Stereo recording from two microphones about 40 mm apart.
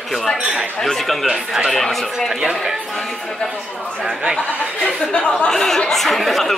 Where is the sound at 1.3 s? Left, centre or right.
Centre.